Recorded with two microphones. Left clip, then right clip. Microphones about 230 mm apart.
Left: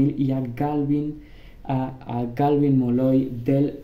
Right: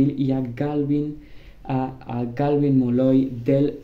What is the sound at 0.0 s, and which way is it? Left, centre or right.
Speech, centre.